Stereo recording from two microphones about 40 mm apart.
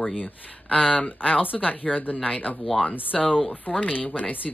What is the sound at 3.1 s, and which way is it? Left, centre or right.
Speech, centre.